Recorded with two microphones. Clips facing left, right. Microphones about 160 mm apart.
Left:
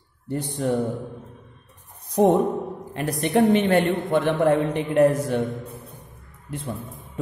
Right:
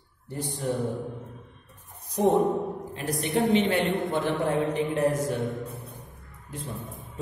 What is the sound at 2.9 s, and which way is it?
A man's voice, 60° left (ahead or behind).